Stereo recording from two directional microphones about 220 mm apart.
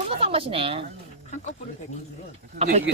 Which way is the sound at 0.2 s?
25° right (ahead or behind).